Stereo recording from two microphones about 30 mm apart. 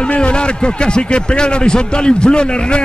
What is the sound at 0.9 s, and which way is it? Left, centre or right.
A man's voice, left.